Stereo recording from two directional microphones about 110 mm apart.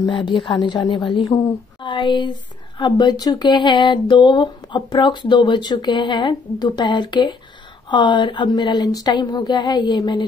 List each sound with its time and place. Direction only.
0.1 s speech: 50° left (ahead or behind)